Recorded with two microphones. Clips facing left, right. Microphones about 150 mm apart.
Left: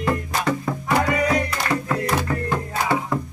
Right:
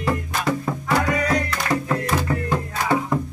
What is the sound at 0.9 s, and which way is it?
Music, 10° left (ahead or behind).